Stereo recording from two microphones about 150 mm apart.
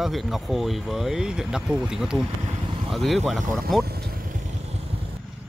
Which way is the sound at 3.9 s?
90° right.